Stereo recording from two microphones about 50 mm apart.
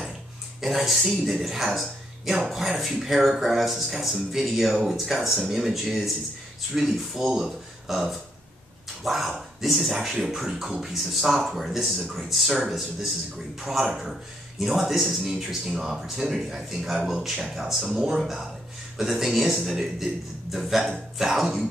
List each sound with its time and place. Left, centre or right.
0.6 s speech: centre